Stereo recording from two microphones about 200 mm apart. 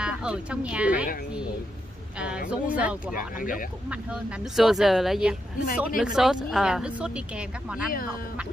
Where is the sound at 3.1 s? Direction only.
45° left (ahead or behind).